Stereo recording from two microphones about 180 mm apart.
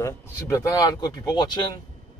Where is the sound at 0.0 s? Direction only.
20° left (ahead or behind).